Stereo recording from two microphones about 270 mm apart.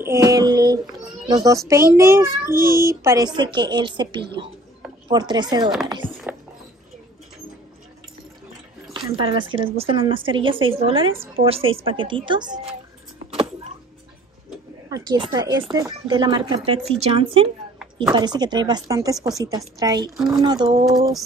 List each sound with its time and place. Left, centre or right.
0.0 s a sound: centre
1.3 s a child's voice: centre
6.0 s music: centre
8.9 s a woman's voice: centre
14.9 s a child's voice: centre